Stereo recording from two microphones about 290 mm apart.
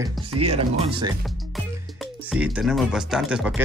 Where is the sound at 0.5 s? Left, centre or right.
Centre.